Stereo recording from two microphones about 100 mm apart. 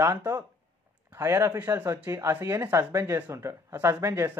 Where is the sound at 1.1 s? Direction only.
30° right (ahead or behind).